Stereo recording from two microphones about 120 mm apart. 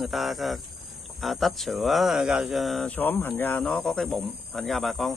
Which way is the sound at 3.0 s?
15° left (ahead or behind).